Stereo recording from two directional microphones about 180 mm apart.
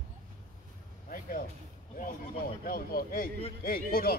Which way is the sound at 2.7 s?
55° left (ahead or behind).